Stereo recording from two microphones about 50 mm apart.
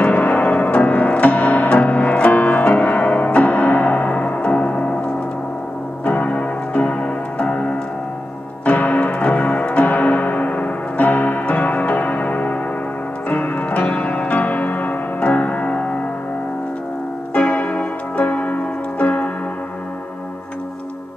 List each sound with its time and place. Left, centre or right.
0.0 s music: left
6.0 s piano: left
8.6 s music: left
17.3 s music: left